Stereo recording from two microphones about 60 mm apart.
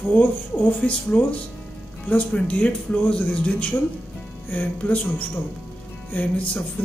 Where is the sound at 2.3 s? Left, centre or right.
Left.